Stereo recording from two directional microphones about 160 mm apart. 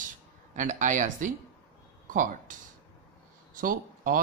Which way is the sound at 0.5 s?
50° right (ahead or behind).